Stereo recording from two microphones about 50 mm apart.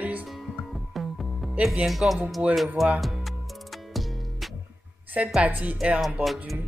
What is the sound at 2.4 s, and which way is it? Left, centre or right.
Speech, right.